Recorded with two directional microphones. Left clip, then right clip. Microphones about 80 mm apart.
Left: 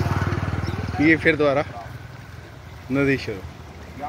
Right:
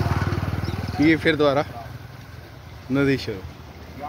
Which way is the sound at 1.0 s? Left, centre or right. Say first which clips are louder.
Left 1 dB; right.